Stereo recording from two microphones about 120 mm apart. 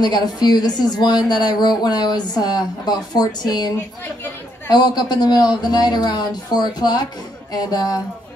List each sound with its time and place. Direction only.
0.0 s speech: 35° left (ahead or behind)